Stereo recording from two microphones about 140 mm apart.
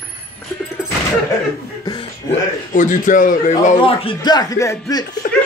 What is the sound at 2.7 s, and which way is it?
Speech, 65° left (ahead or behind).